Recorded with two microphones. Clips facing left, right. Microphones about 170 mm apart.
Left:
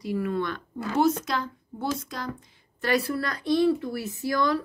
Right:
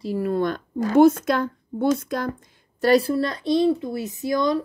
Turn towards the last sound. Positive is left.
turn(degrees=-20)  # may be behind; listen again after turning